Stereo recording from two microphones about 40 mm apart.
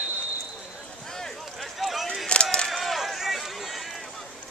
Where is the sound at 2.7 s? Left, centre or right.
Centre.